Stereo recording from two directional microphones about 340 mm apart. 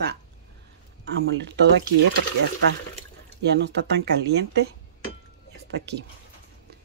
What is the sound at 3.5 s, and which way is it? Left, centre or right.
Speech, right.